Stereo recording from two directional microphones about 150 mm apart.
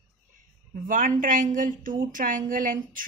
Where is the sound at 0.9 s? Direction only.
65° right (ahead or behind).